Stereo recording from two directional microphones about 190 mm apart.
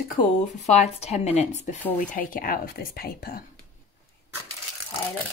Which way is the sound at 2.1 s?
45° left (ahead or behind).